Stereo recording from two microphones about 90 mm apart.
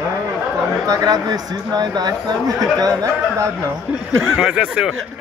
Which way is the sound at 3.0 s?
35° right (ahead or behind).